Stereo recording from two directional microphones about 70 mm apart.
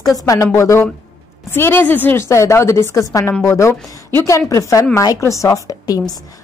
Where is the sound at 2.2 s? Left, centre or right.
Left.